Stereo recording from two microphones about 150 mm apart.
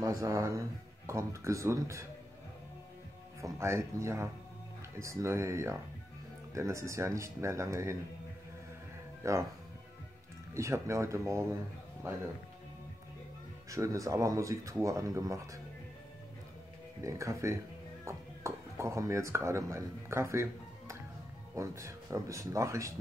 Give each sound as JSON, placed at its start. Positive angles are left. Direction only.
{"t": 0.0, "sound": "speech", "side_deg": -20}
{"t": 3.3, "sound": "speech", "side_deg": -20}
{"t": 9.2, "sound": "speech", "side_deg": -20}
{"t": 10.5, "sound": "speech", "side_deg": -20}
{"t": 13.7, "sound": "speech", "side_deg": -20}
{"t": 17.0, "sound": "speech", "side_deg": -20}
{"t": 21.5, "sound": "speech", "side_deg": -20}